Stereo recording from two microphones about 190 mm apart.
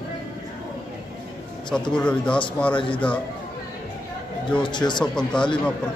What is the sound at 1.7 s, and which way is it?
A man's voice, 5° left (ahead or behind).